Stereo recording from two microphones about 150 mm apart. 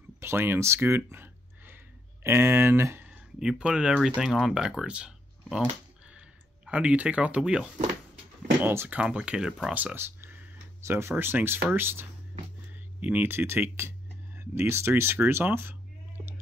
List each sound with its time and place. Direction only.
0.2 s speech: 15° right (ahead or behind)